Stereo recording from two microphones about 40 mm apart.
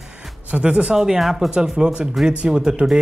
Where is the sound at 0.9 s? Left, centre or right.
Centre.